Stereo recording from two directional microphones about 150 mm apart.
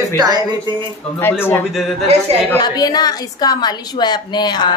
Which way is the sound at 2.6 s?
25° left (ahead or behind).